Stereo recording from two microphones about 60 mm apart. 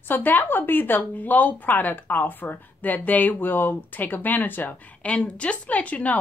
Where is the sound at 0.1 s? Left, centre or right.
Left.